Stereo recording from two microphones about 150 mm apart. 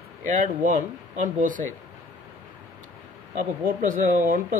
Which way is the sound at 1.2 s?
60° right (ahead or behind).